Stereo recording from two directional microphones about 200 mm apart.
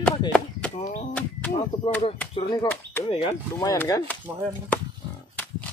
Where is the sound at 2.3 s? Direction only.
25° left (ahead or behind).